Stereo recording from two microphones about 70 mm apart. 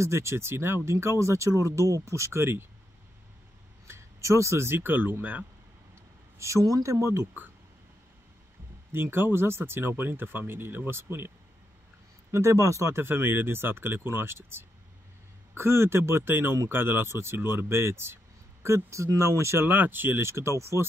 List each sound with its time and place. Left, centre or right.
0.0 s speech: right
3.8 s speech: right
6.3 s speech: right
8.9 s speech: right